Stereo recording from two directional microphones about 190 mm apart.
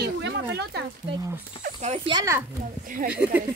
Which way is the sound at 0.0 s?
60° right (ahead or behind).